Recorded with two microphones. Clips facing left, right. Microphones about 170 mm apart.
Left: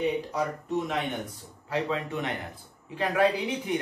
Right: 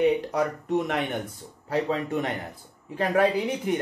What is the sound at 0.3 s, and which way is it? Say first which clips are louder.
Speech: right 4 dB; 65° right (ahead or behind).